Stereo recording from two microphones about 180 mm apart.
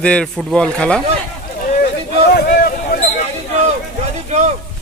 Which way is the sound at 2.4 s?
55° left (ahead or behind).